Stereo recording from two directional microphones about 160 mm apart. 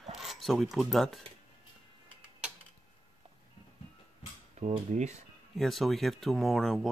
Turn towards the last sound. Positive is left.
turn(degrees=0)  # may be behind; listen again after turning